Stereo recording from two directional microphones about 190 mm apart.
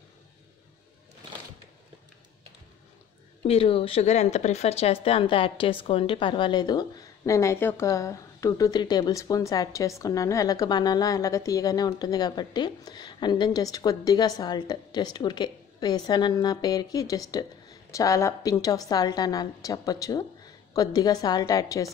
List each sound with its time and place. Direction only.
3.4 s speech: 30° left (ahead or behind)